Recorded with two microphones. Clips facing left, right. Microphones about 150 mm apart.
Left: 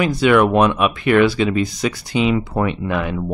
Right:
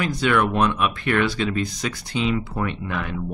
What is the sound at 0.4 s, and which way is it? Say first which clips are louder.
Speech: left 5 dB; 80° left.